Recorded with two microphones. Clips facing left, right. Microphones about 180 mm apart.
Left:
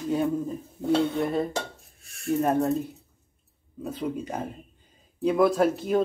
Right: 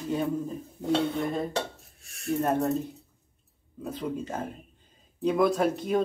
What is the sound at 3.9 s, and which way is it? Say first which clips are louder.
Speech: left 2 dB; 15° left (ahead or behind).